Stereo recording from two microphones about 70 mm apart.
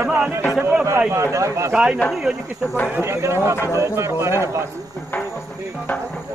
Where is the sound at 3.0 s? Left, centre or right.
Right.